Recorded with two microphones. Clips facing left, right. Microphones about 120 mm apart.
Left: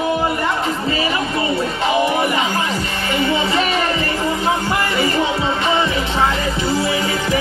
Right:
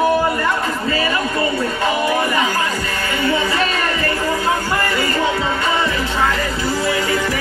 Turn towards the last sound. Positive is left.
turn(degrees=20)  # may be behind; listen again after turning